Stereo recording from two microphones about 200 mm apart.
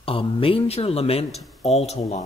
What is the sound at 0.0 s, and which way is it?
Speech, 25° left (ahead or behind).